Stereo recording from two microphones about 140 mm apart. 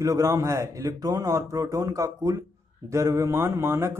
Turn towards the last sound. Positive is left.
turn(degrees=-20)  # may be behind; listen again after turning